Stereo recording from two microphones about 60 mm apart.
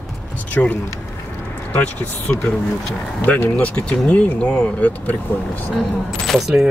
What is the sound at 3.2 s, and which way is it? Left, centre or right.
Speech, left.